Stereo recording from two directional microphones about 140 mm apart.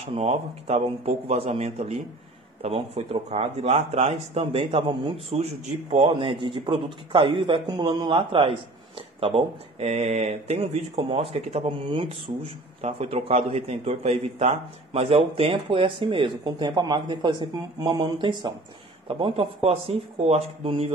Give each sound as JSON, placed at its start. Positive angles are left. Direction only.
{"t": 0.0, "sound": "speech", "side_deg": -50}